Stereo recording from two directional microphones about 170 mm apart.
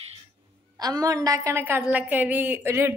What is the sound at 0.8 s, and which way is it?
A woman's voice, 20° right (ahead or behind).